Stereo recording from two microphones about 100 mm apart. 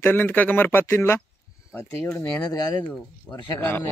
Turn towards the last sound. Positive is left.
turn(degrees=15)  # may be behind; listen again after turning